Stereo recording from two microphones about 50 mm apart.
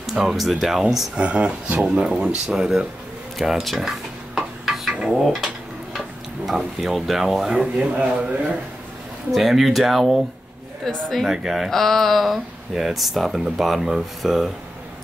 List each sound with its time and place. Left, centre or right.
0.0 s speech: centre
1.1 s speech: right
3.3 s speech: centre
4.4 s a sound: centre
5.1 s speech: centre
7.6 s speech: right
9.3 s speech: centre
10.9 s speech: centre
11.3 s speech: centre
11.7 s speech: centre